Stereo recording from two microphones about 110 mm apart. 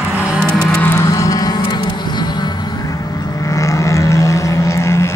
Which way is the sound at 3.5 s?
30° left (ahead or behind).